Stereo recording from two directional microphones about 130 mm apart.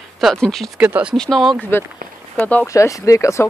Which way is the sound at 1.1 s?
5° left (ahead or behind).